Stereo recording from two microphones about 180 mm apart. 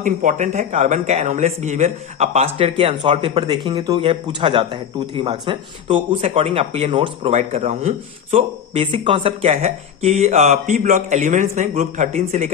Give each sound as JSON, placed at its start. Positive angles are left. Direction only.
{"t": 0.0, "sound": "speech", "side_deg": -45}